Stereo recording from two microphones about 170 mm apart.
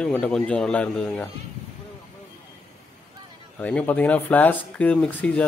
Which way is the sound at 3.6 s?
10° left (ahead or behind).